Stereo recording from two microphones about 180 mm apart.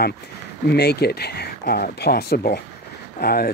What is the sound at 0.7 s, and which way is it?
Speech, 65° left (ahead or behind).